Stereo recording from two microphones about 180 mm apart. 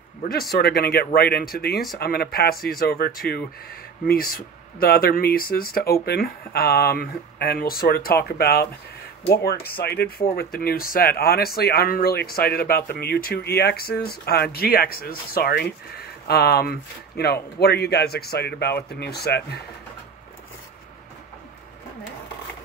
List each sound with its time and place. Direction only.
0.2 s speech: 55° left (ahead or behind)